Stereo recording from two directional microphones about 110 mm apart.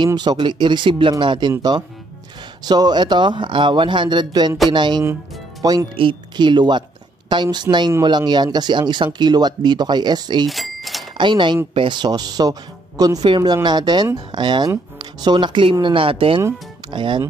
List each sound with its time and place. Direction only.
0.0 s speech: 40° right (ahead or behind)
5.9 s speech: 45° right (ahead or behind)
10.5 s bicycle bell: centre (ahead or behind)
11.1 s speech: 45° right (ahead or behind)